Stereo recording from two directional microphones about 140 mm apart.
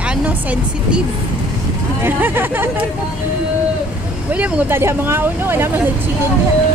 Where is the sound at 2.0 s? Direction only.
15° right (ahead or behind).